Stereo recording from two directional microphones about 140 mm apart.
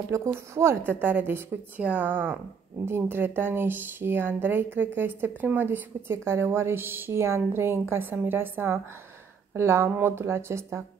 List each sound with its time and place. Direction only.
0.1 s speech: 20° right (ahead or behind)